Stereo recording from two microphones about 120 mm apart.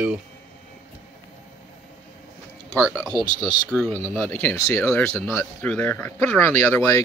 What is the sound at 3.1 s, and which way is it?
Speech, 35° left (ahead or behind).